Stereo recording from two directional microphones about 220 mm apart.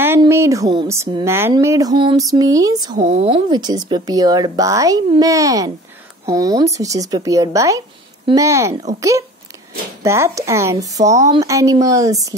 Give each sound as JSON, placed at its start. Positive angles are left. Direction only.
{"t": 0.0, "sound": "speech", "side_deg": -10}
{"t": 2.0, "sound": "a sound", "side_deg": -20}
{"t": 2.3, "sound": "speech", "side_deg": -15}
{"t": 2.9, "sound": "speech", "side_deg": -35}
{"t": 10.0, "sound": "speech", "side_deg": -10}